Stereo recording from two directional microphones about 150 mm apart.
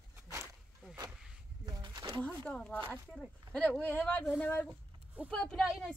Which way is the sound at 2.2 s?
10° left (ahead or behind).